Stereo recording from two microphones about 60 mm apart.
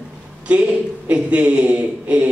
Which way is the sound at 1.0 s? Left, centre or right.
Centre.